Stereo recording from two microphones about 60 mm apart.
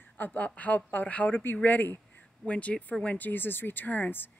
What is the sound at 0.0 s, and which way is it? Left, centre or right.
A woman's voice, left.